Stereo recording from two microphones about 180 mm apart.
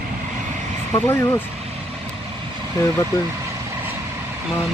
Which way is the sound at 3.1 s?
15° left (ahead or behind).